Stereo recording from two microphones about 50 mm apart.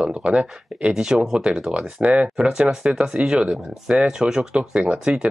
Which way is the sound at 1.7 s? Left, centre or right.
Right.